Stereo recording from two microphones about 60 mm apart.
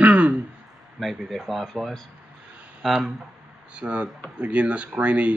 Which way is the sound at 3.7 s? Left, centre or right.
Centre.